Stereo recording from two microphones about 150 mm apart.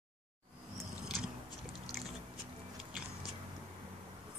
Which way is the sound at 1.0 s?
5° right (ahead or behind).